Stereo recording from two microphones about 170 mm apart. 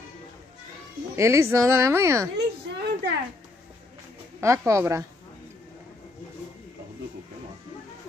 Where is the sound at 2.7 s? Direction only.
90° right.